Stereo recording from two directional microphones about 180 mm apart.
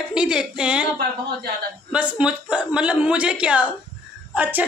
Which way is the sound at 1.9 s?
5° right (ahead or behind).